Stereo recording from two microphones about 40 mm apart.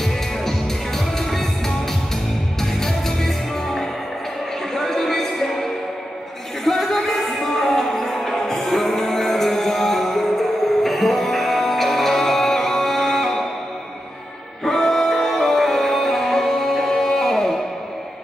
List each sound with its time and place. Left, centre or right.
0.0 s music: centre
2.6 s music: centre
4.7 s a sound: centre
6.6 s music: centre
14.6 s music: centre